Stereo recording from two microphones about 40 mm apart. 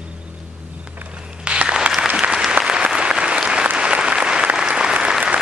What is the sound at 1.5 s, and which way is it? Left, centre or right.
Applause, right.